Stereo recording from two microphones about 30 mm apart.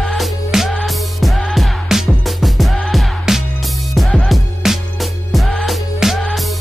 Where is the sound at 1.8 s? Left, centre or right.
Centre.